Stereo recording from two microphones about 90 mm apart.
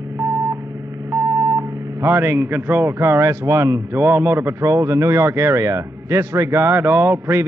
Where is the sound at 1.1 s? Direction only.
35° right (ahead or behind).